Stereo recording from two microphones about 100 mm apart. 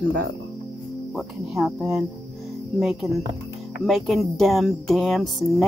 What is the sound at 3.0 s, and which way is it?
Speech, centre (ahead or behind).